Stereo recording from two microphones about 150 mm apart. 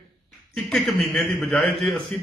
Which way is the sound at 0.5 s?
Centre (ahead or behind).